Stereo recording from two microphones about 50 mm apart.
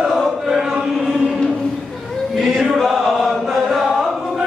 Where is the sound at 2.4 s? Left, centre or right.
Centre.